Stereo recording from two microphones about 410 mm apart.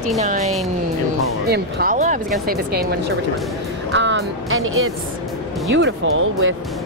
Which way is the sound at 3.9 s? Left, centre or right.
Right.